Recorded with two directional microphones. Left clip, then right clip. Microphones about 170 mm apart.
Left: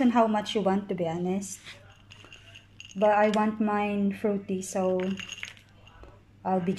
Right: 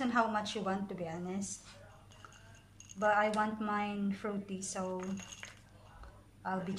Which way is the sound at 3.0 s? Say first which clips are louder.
Left 8 dB; 35° left (ahead or behind).